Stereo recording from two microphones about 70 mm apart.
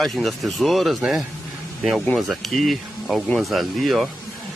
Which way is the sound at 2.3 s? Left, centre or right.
Centre.